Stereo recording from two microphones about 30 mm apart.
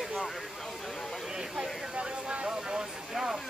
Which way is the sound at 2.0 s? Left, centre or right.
Right.